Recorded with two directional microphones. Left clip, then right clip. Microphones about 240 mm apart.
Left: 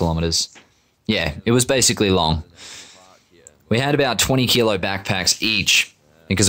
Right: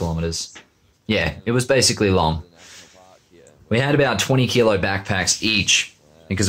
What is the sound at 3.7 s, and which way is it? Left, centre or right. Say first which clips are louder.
Speech: even; left.